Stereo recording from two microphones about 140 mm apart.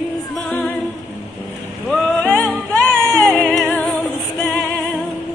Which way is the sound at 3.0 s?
15° right (ahead or behind).